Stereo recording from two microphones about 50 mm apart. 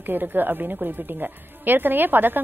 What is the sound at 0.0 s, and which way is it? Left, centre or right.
A woman's voice, right.